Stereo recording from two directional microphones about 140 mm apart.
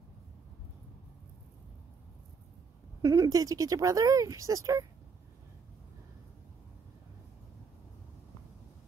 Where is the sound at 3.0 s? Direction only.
25° right (ahead or behind).